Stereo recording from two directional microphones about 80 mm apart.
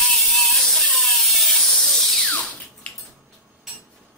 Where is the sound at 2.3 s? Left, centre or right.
Centre.